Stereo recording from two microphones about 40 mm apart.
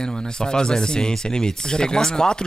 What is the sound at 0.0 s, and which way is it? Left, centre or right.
Speech, centre.